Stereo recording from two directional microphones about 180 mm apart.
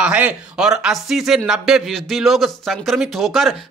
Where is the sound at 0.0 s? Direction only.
5° right (ahead or behind).